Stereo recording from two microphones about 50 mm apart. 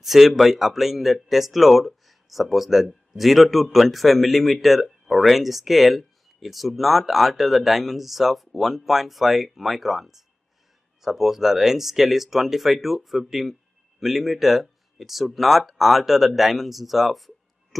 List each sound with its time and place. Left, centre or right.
0.0 s speech: centre